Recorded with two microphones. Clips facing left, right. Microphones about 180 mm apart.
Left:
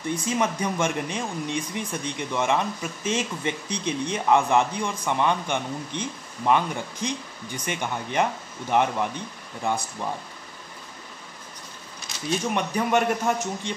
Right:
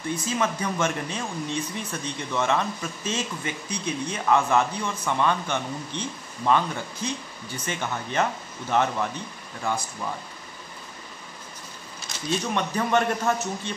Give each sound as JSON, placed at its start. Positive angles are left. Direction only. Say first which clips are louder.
{"t": 0.2, "sound": "speech", "louder": "left 2 dB", "side_deg": 15}
{"t": 12.5, "sound": "speech", "louder": "even", "side_deg": 10}